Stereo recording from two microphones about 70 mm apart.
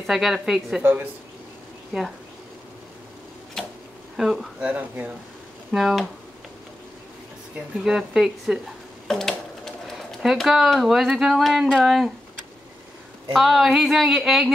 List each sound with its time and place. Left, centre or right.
0.0 s speech: centre
3.6 s a sound: centre
4.2 s speech: centre
4.6 s speech: right
5.7 s speech: centre
7.8 s speech: centre
9.0 s a sound: centre
10.2 s speech: centre
13.3 s speech: centre